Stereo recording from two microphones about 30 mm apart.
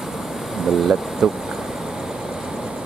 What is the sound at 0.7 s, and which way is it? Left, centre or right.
Speech, centre.